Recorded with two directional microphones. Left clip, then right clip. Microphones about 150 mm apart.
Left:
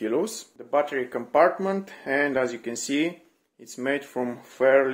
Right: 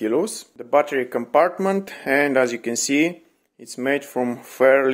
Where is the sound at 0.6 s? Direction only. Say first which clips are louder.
Right 6 dB; 50° right (ahead or behind).